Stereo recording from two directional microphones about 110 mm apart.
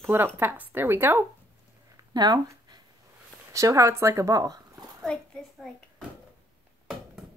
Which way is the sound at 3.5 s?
30° right (ahead or behind).